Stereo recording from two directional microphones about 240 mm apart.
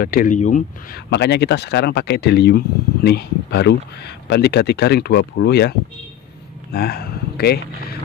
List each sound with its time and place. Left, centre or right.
0.0 s speech: left
1.1 s speech: left